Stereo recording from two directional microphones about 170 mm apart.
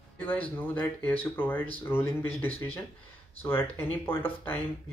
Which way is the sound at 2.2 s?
35° left (ahead or behind).